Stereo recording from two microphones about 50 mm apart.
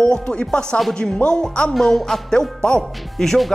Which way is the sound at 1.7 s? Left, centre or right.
Centre.